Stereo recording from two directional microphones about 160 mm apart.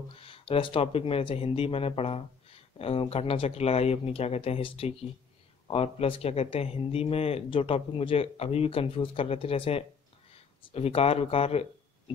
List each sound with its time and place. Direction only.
0.1 s speech: 35° left (ahead or behind)